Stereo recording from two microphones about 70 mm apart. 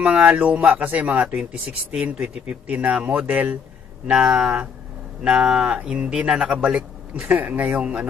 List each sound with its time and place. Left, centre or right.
0.0 s speech: centre